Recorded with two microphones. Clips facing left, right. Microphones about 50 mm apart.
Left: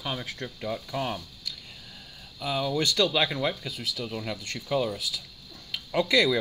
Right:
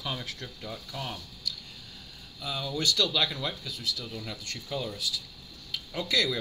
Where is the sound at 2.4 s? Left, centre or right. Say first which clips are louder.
Left 4 dB; left.